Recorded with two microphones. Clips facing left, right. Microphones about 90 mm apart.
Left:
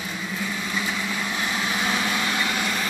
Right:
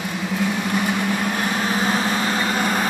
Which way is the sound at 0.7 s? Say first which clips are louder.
Right 6 dB; 55° right (ahead or behind).